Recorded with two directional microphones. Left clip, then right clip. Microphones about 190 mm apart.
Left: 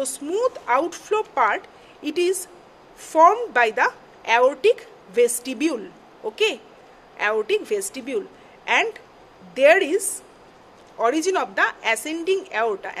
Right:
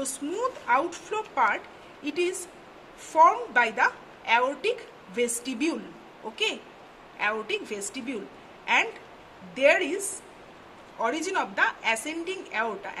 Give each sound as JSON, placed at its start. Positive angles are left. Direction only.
{"t": 0.0, "sound": "a woman's voice", "side_deg": 50}
{"t": 9.5, "sound": "a woman's voice", "side_deg": 55}